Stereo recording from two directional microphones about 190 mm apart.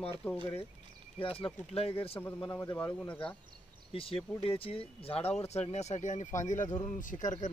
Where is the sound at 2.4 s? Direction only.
15° left (ahead or behind).